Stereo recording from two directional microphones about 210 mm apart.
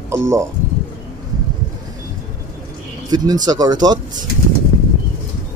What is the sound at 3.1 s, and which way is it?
Speech, 20° right (ahead or behind).